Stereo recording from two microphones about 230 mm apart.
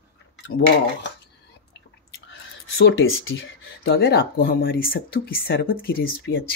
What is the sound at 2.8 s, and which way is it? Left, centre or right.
Speech, left.